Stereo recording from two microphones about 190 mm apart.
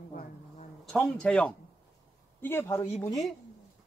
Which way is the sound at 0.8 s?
5° left (ahead or behind).